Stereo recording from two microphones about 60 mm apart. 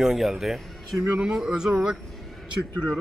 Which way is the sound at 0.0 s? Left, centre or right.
Centre.